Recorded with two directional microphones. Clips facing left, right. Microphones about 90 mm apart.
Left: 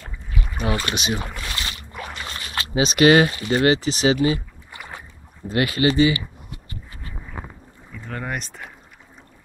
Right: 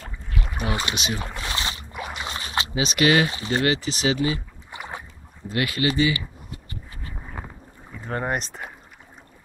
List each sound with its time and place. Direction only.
0.6 s speech: 20° right (ahead or behind)
1.0 s speech: 10° left (ahead or behind)
1.3 s boat: 25° right (ahead or behind)
1.9 s a sound: 15° right (ahead or behind)
2.7 s speech: 35° left (ahead or behind)
3.6 s speech: 30° left (ahead or behind)
4.6 s boat: 20° right (ahead or behind)
5.5 s speech: 30° left (ahead or behind)
7.9 s speech: 35° right (ahead or behind)